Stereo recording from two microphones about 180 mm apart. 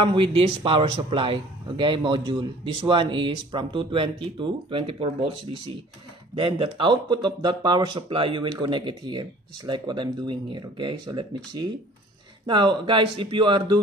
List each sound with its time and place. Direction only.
0.0 s a man's voice: 30° right (ahead or behind)